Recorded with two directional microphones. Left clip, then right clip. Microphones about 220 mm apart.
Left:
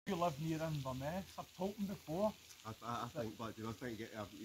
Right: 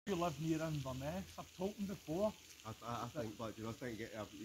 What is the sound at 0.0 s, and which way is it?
Speech, 25° left (ahead or behind).